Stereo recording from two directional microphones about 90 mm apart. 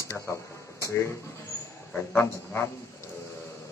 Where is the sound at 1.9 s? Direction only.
20° left (ahead or behind).